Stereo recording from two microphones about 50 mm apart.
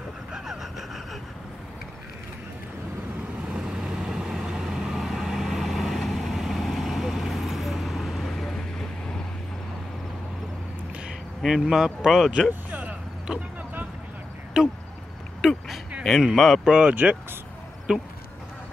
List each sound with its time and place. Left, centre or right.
0.3 s vehicle: centre
3.4 s vehicle: centre
11.4 s speech: centre
13.3 s speech: centre
14.5 s speech: centre
15.4 s vehicle: centre
16.2 s speech: centre
16.6 s speech: centre
16.9 s speech: right
17.9 s speech: centre